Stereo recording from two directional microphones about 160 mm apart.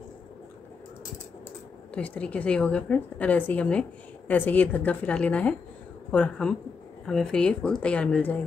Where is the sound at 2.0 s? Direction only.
10° left (ahead or behind).